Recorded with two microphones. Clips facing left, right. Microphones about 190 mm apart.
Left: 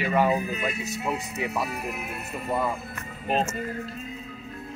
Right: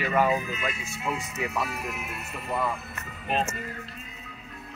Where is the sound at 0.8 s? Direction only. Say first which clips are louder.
Left 3 dB; 40° left (ahead or behind).